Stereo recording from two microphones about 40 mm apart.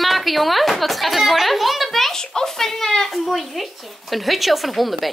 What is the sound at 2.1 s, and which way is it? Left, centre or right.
Speech, centre.